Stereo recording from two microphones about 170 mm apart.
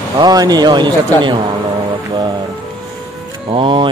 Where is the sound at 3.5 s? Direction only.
30° right (ahead or behind).